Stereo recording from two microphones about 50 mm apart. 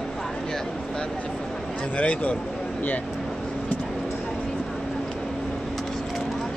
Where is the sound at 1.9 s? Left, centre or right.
Left.